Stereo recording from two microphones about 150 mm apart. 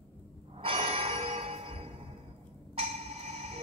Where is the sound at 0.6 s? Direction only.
40° right (ahead or behind).